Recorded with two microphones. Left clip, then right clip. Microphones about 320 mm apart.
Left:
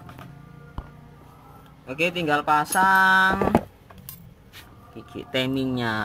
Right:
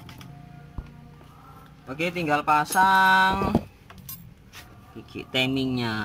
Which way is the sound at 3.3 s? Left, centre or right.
Left.